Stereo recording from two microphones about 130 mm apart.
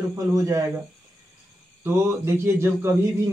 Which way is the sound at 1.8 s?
20° right (ahead or behind).